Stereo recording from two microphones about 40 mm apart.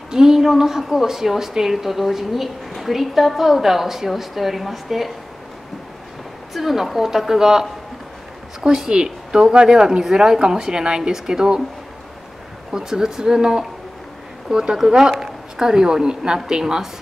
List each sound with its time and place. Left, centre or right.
0.1 s a woman's voice: centre
6.5 s a woman's voice: centre
12.7 s a woman's voice: centre